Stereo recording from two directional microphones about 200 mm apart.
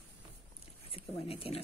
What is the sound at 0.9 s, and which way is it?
Speech, 30° left (ahead or behind).